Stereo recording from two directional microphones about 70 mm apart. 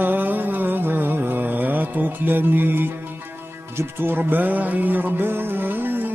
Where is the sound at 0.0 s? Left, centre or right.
Right.